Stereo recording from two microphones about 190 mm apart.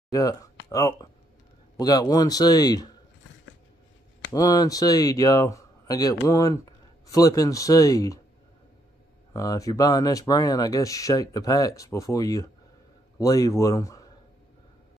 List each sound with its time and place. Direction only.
0.1 s speech: 20° left (ahead or behind)
4.3 s speech: 20° left (ahead or behind)
9.3 s speech: 15° left (ahead or behind)